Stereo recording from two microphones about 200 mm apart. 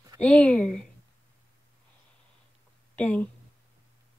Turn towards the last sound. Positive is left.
turn(degrees=5)  # may be behind; listen again after turning